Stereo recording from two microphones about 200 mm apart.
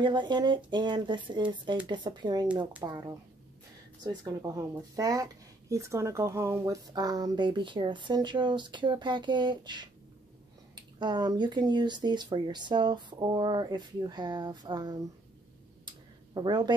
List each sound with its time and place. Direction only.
0.0 s a woman's voice: 20° right (ahead or behind)
16.3 s a woman's voice: 20° right (ahead or behind)